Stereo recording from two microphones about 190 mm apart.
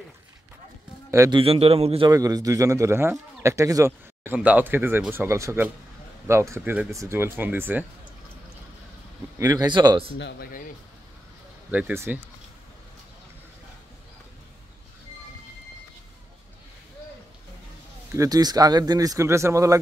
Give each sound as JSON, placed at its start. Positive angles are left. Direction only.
{"t": 1.1, "sound": "speech", "side_deg": -15}
{"t": 1.4, "sound": "speech", "side_deg": -30}
{"t": 2.0, "sound": "speech", "side_deg": -20}
{"t": 9.4, "sound": "speech", "side_deg": -20}
{"t": 10.1, "sound": "speech", "side_deg": 65}
{"t": 11.7, "sound": "speech", "side_deg": -10}
{"t": 18.1, "sound": "speech", "side_deg": -20}